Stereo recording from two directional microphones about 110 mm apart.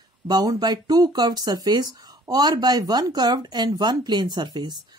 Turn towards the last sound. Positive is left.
turn(degrees=-40)  # may be behind; listen again after turning